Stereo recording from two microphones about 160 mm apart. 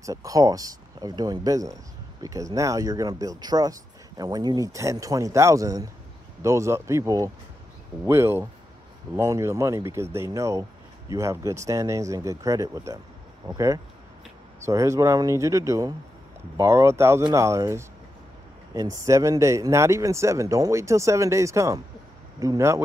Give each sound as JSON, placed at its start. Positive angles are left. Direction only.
{"t": 0.0, "sound": "speech", "side_deg": -20}